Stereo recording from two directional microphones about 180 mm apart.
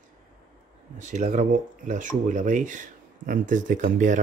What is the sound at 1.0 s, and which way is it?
Speech, 40° right (ahead or behind).